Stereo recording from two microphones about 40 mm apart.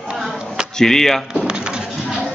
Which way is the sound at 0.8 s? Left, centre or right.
Centre.